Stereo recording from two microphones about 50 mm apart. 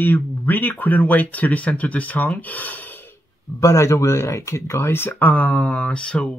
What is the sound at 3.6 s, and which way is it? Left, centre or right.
Speech, left.